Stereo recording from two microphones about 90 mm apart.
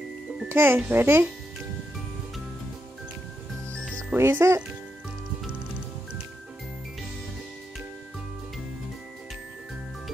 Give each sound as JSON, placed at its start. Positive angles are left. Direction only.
{"t": 0.5, "sound": "a child's voice", "side_deg": -25}
{"t": 4.1, "sound": "a child's voice", "side_deg": -25}